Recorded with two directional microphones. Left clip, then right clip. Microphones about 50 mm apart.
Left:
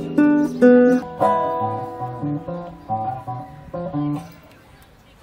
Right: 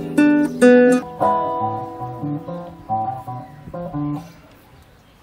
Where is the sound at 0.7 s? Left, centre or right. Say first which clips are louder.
Right 2 dB; right.